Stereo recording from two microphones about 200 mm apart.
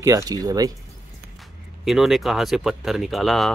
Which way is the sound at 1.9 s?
Centre (ahead or behind).